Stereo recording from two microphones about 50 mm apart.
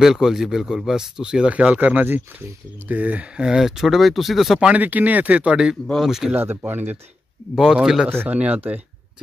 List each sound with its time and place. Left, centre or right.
0.0 s speech: centre; by 3.4 s right
3.4 s speech: centre
4.7 s speech: right
5.9 s speech: centre
6.4 s speech: right
7.5 s speech: centre
8.3 s speech: right